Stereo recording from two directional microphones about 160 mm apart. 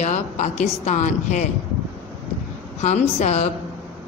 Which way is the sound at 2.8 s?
45° left (ahead or behind).